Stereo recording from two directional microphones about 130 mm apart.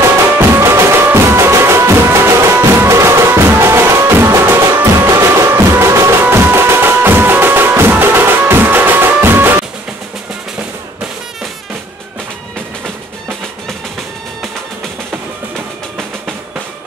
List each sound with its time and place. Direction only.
0.4 s music: 20° right (ahead or behind)